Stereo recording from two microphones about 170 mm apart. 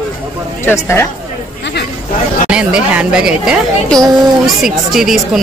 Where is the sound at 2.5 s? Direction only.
5° right (ahead or behind).